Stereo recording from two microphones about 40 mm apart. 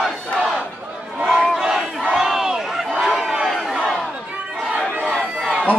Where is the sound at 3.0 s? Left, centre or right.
Centre.